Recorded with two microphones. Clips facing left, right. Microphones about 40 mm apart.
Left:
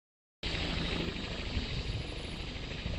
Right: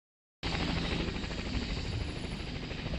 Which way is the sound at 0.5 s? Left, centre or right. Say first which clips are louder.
Right 2 dB; centre.